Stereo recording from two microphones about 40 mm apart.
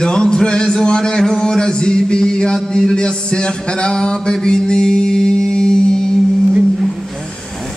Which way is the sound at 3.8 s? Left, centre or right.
Left.